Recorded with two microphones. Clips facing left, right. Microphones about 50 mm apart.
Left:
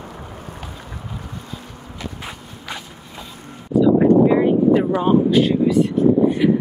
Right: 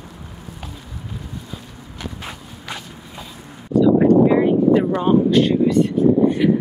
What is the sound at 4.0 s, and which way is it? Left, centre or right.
Speech, centre.